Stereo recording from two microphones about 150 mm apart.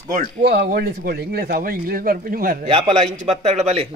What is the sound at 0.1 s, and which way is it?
Speech, 90° right.